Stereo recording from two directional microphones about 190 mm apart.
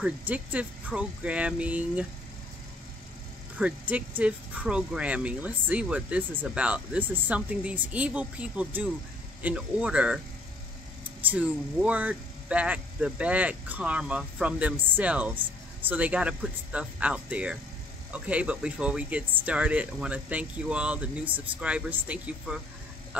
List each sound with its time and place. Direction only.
0.0 s speech: 10° right (ahead or behind)
3.5 s speech: 5° right (ahead or behind)